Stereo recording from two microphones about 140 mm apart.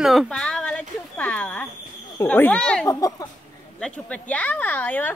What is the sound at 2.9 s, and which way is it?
Speech, 25° left (ahead or behind).